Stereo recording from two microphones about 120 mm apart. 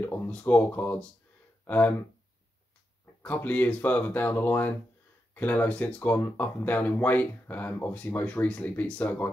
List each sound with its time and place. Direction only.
0.0 s speech: 15° left (ahead or behind)
3.2 s speech: 15° left (ahead or behind)